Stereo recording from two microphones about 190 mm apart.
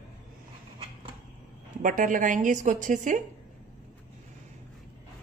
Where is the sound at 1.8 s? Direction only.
45° right (ahead or behind).